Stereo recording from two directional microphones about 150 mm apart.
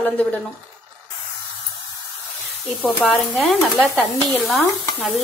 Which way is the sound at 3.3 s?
Centre (ahead or behind).